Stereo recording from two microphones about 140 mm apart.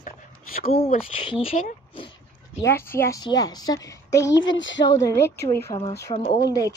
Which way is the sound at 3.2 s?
30° left (ahead or behind).